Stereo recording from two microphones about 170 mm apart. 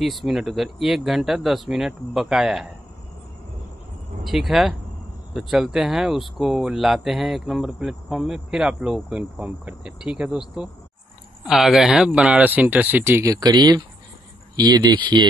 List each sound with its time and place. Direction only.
0.0 s speech: centre (ahead or behind)
4.2 s speech: centre (ahead or behind)
11.4 s speech: centre (ahead or behind); by 15.2 s 25° right (ahead or behind)